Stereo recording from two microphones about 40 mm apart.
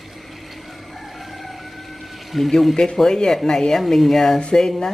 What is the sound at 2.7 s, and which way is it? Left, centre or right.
Speech, centre.